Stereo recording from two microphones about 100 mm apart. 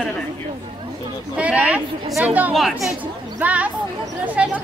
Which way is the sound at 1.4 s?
10° right (ahead or behind).